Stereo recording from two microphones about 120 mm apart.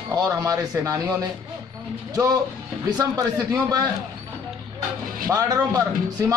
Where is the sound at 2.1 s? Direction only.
30° right (ahead or behind).